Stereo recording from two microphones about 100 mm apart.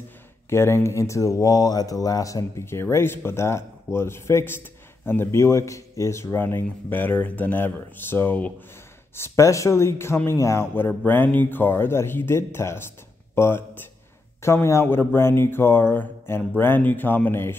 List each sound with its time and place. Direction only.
0.5 s speech: 25° left (ahead or behind)
9.1 s speech: 25° left (ahead or behind)